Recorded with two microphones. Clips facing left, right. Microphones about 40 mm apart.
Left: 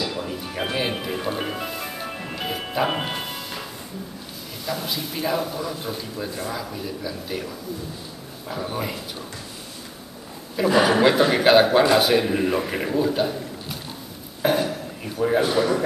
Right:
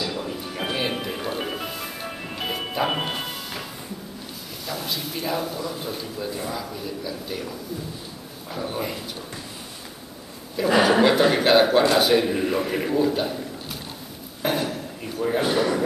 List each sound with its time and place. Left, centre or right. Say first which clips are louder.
0.0 s music: left 1 dB; centre
4.6 s a man's voice: left 2 dB; centre
8.5 s a man's voice: left 1 dB; centre
10.7 s a man's voice: even; centre
14.4 s a sound: left 3 dB; centre
15.2 s a man's voice: left 3 dB; centre
15.5 s a man's voice: left 1 dB; centre